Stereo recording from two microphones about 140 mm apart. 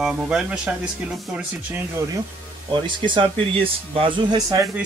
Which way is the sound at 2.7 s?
35° right (ahead or behind).